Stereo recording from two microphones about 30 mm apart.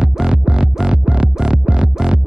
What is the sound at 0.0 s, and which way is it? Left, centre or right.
Music, right.